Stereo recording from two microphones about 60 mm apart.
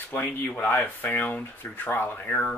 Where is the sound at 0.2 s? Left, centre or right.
Left.